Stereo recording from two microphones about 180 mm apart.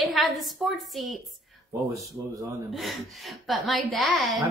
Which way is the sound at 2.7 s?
Centre (ahead or behind).